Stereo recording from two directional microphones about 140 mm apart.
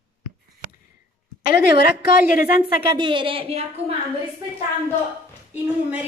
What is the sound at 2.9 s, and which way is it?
Speech, 35° right (ahead or behind).